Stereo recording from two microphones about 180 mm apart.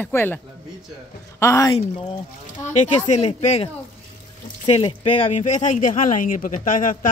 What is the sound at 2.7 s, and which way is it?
Speech, 40° left (ahead or behind).